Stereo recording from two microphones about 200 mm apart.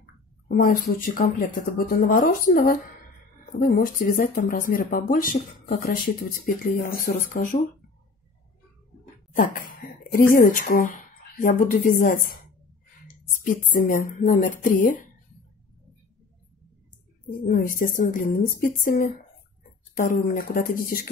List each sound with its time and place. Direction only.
0.5 s speech: 45° left (ahead or behind)
9.4 s speech: 45° left (ahead or behind)
13.5 s speech: 45° left (ahead or behind)
17.5 s speech: 40° left (ahead or behind)